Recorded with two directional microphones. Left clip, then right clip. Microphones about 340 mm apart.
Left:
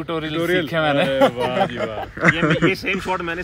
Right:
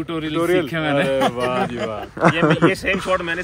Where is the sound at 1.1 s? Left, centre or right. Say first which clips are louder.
Left 1 dB; centre.